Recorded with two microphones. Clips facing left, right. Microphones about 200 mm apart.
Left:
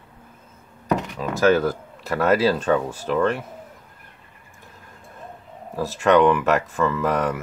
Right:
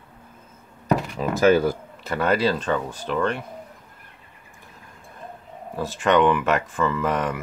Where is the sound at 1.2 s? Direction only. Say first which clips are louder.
Right 2 dB; 15° right (ahead or behind).